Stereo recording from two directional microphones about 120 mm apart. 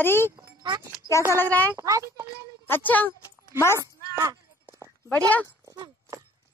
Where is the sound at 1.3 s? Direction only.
15° left (ahead or behind).